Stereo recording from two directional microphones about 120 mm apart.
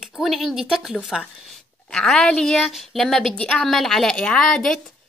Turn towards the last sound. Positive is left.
turn(degrees=5)  # may be behind; listen again after turning